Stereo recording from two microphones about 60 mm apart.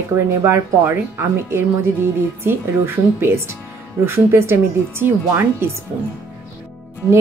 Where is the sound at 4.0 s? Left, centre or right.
Right.